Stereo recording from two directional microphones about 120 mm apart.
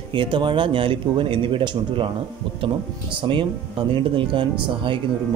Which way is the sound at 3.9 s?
45° right (ahead or behind).